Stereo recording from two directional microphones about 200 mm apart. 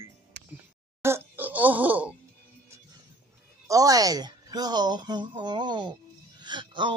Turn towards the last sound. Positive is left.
turn(degrees=-25)  # may be behind; listen again after turning